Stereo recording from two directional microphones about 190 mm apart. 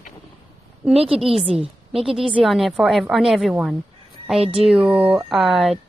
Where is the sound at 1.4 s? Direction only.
30° right (ahead or behind).